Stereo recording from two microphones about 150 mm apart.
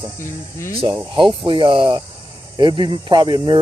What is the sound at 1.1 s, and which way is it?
Speech, 35° right (ahead or behind).